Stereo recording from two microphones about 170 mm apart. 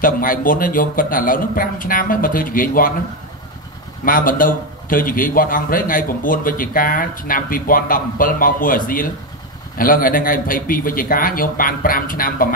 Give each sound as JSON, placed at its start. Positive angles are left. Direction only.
{"t": 0.0, "sound": "a man's voice", "side_deg": 55}
{"t": 4.0, "sound": "a man's voice", "side_deg": 55}